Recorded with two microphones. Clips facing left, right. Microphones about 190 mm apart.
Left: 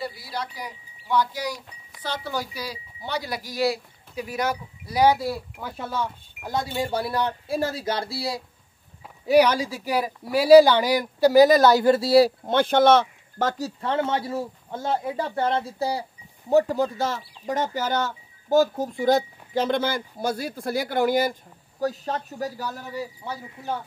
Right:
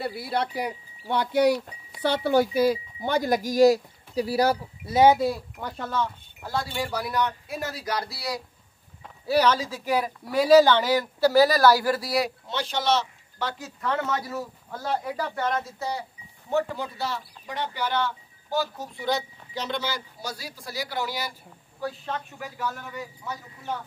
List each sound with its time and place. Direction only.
0.0 s speech: 60° right (ahead or behind); by 5.1 s 25° right (ahead or behind)
5.6 s speech: 5° left (ahead or behind); by 8.4 s 25° left (ahead or behind)
9.0 s speech: 15° left (ahead or behind)
12.4 s speech: 55° left (ahead or behind)
13.7 s a man's voice: 30° left (ahead or behind)